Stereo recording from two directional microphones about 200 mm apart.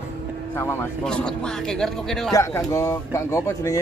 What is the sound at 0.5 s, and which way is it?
A man's voice, 10° left (ahead or behind).